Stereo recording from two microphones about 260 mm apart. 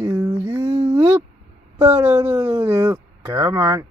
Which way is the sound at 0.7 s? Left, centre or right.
Right.